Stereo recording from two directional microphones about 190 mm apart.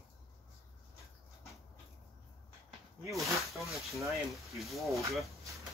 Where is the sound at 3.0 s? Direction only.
Centre (ahead or behind).